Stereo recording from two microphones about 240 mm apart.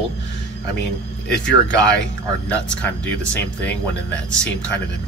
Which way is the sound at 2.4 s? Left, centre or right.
Centre.